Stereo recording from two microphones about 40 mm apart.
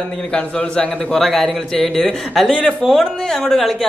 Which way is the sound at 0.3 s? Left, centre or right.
Left.